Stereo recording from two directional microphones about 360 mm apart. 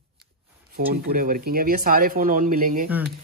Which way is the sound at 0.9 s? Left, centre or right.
Right.